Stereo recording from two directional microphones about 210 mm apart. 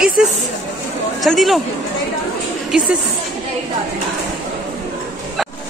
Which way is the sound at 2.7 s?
5° right (ahead or behind).